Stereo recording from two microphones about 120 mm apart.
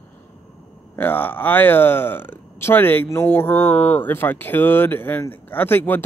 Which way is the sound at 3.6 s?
60° left (ahead or behind).